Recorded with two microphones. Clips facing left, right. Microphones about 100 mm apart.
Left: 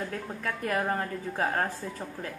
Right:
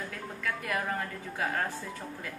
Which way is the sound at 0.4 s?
35° left (ahead or behind).